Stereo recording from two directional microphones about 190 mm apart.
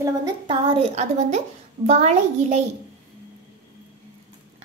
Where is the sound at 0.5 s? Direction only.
30° right (ahead or behind).